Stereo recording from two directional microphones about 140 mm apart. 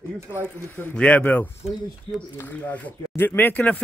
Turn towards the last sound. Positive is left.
turn(degrees=10)  # may be behind; listen again after turning